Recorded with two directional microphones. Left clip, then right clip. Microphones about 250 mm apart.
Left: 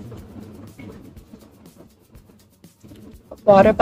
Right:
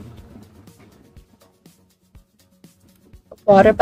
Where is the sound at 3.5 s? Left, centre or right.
Centre.